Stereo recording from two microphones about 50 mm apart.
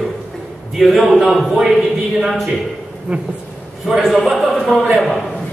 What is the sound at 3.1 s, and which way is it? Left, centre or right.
Speech, right.